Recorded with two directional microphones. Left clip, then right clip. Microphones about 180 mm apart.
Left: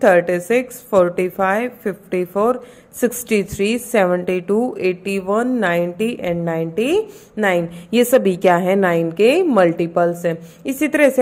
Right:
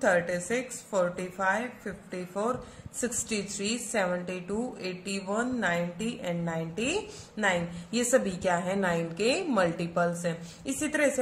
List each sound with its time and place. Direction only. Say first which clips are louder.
0.0 s a woman's voice: left 13 dB; 50° left (ahead or behind)